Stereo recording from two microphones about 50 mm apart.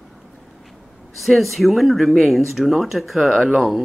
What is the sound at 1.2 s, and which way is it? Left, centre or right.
Speech, centre.